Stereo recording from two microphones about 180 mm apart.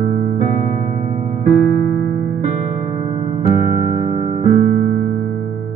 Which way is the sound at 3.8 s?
45° right (ahead or behind).